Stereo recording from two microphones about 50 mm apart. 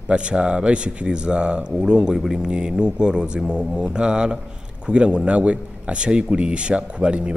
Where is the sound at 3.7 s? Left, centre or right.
Centre.